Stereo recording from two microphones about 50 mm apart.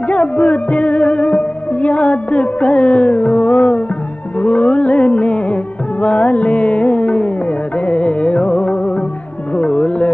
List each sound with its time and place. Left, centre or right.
0.1 s music: left
4.4 s music of bollywood: left
7.8 s music: left